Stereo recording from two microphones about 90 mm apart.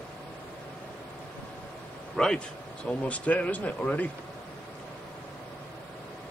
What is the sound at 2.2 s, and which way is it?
Speech, 5° left (ahead or behind).